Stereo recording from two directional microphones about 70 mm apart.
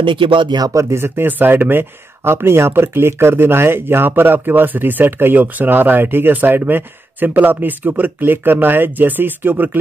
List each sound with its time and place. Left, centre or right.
0.7 s speech: right